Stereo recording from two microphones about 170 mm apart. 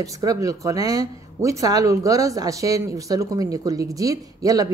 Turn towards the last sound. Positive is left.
turn(degrees=-20)  # may be behind; listen again after turning